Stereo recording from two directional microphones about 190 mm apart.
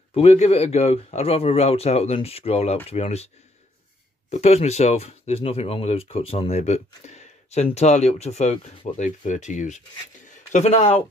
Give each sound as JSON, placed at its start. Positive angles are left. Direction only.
{"t": 0.1, "sound": "speech", "side_deg": 35}
{"t": 4.3, "sound": "speech", "side_deg": 35}